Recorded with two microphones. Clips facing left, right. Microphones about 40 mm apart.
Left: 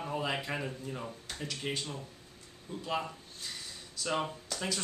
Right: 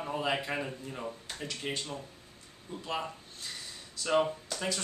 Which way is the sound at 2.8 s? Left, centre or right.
Centre.